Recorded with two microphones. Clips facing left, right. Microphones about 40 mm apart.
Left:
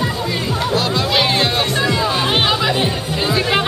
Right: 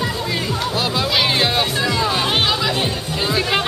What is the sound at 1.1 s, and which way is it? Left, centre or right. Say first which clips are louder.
Music: left 1 dB; centre.